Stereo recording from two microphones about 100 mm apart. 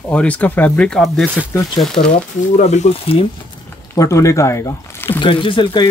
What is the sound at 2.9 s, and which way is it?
Speech, 70° left (ahead or behind).